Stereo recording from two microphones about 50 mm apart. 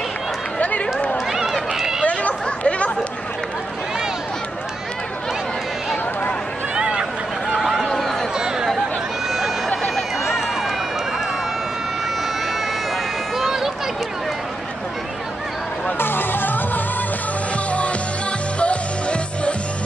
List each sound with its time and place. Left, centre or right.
0.6 s run: left
1.1 s run: centre
2.0 s chatter: left
6.7 s a sound: centre
7.6 s run: centre
8.4 s a sound: centre
13.4 s a sound: centre
16.0 s music: left
17.6 s music: left